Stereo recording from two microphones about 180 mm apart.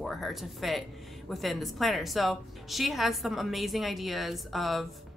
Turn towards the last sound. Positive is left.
turn(degrees=0)  # may be behind; listen again after turning